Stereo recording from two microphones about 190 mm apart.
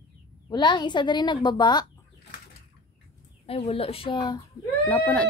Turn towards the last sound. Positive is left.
turn(degrees=10)  # may be behind; listen again after turning